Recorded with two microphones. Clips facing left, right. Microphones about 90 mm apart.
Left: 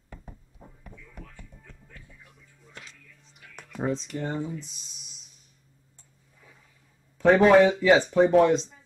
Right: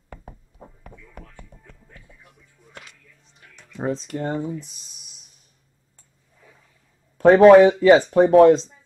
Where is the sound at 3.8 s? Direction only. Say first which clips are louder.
Right 4 dB; 45° right (ahead or behind).